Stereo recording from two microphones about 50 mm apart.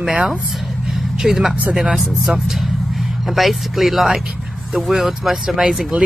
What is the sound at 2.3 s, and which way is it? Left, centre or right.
Speech, centre.